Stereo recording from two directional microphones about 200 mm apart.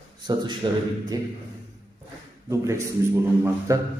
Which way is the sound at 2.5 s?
15° right (ahead or behind).